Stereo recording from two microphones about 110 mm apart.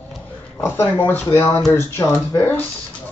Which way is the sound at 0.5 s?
20° left (ahead or behind).